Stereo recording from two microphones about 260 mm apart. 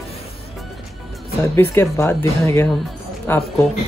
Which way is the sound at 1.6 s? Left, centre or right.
Centre.